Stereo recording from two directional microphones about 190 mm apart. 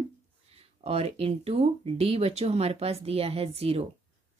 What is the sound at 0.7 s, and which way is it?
Speech, 30° right (ahead or behind).